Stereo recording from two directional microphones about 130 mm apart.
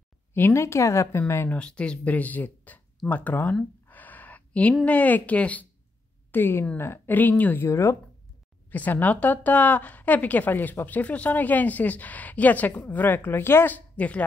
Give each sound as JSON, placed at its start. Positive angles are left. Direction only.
{"t": 0.3, "sound": "speech", "side_deg": 20}
{"t": 1.6, "sound": "a woman's voice", "side_deg": 10}
{"t": 3.8, "sound": "a sound", "side_deg": 15}
{"t": 6.3, "sound": "a woman's voice", "side_deg": 15}